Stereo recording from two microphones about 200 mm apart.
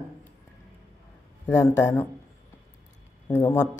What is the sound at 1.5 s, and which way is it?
Speech, 15° left (ahead or behind).